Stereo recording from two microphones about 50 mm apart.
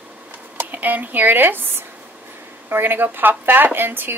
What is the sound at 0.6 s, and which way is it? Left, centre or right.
Speech, right.